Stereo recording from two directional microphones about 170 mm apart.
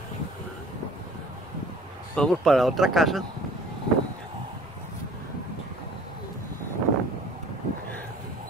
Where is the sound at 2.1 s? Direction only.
5° left (ahead or behind).